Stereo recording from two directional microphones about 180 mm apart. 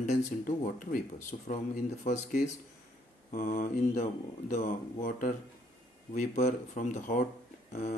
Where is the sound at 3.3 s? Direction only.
50° left (ahead or behind).